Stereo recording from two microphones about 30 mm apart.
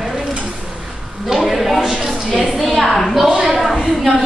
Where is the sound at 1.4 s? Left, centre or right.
Centre.